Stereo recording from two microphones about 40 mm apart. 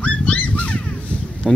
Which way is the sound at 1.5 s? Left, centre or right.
Centre.